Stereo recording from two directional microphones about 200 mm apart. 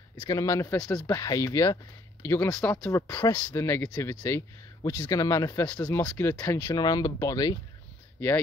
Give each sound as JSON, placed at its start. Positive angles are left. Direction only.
{"t": 0.2, "sound": "speech", "side_deg": 15}